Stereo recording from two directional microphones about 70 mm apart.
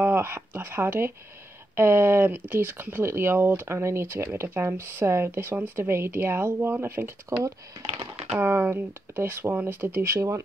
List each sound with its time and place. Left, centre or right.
0.0 s speech: right
7.3 s speech: right
8.4 s speech: right